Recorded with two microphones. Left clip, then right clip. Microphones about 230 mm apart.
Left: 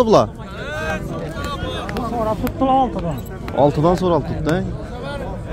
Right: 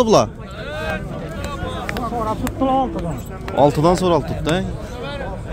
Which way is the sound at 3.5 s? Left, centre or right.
Centre.